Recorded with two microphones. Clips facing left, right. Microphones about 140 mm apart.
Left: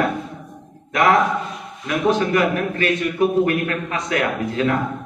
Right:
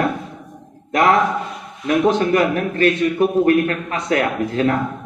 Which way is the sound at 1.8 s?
35° right (ahead or behind).